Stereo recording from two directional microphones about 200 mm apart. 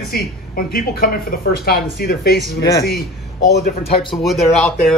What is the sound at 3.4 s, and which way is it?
Speech, 55° left (ahead or behind).